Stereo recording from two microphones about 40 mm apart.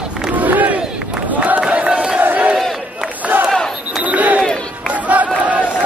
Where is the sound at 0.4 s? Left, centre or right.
Right.